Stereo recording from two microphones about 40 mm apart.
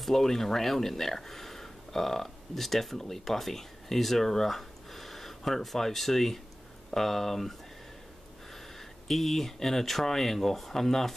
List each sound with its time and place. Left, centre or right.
0.0 s speech: centre
8.7 s speech: centre